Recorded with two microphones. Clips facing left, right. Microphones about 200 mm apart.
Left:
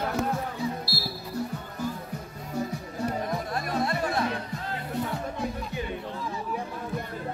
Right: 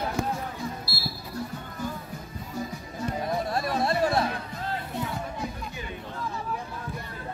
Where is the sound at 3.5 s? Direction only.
30° right (ahead or behind).